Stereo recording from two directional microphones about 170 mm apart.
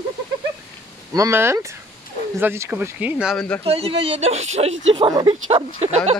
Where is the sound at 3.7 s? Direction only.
35° right (ahead or behind).